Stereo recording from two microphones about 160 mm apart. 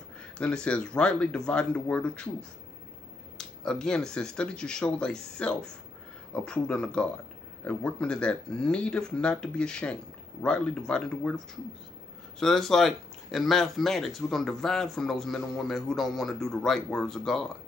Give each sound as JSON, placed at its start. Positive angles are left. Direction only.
{"t": 0.4, "sound": "speech", "side_deg": 5}
{"t": 3.3, "sound": "speech", "side_deg": 5}